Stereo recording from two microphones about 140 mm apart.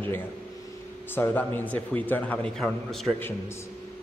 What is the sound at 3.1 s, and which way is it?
Speech, 15° left (ahead or behind).